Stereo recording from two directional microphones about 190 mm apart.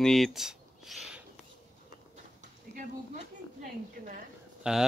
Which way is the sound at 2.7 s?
45° right (ahead or behind).